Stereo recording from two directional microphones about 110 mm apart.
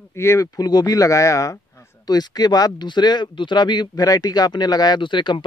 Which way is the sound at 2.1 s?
40° left (ahead or behind).